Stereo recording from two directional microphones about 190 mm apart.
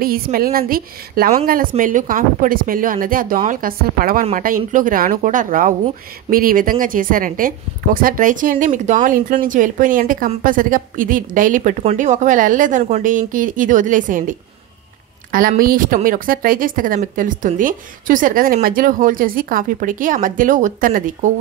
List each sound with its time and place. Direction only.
0.0 s speech: 50° right (ahead or behind)
15.3 s speech: 50° right (ahead or behind)